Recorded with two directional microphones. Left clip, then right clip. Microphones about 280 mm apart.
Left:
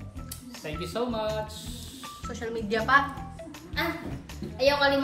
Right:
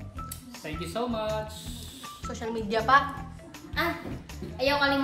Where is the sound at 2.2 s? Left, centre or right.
Centre.